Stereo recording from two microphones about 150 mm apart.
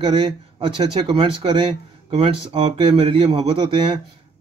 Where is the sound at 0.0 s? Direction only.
35° right (ahead or behind).